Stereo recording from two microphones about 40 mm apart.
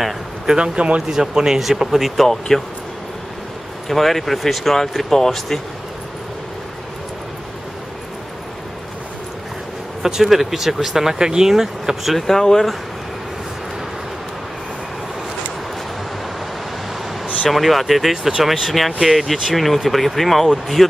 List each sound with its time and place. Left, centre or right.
0.6 s speech: right
1.1 s speech: centre
2.2 s speech: centre
3.9 s speech: centre
10.0 s speech: centre
12.3 s speech: centre
17.5 s speech: centre